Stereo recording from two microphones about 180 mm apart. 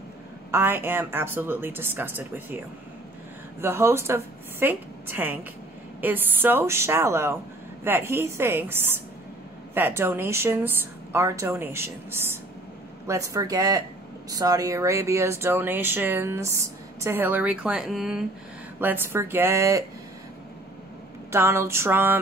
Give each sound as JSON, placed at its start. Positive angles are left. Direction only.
{"t": 0.5, "sound": "speech", "side_deg": -10}
{"t": 3.6, "sound": "speech", "side_deg": -15}
{"t": 21.3, "sound": "speech", "side_deg": -15}